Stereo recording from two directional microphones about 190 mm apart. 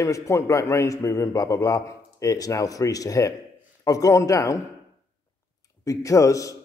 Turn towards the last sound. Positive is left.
turn(degrees=15)  # may be behind; listen again after turning